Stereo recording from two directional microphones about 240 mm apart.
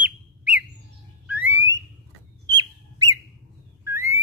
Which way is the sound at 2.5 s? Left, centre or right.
Centre.